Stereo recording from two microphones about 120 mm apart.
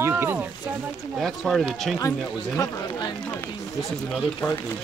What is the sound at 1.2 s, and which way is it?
Speech, centre (ahead or behind).